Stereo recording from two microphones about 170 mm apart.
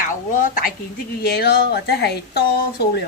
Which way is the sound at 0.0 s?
50° left (ahead or behind).